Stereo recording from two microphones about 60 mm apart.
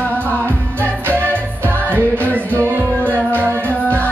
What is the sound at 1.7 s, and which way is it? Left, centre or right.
Music, left.